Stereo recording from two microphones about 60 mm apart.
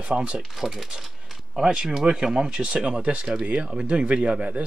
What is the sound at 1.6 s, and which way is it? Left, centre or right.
A man's voice, centre.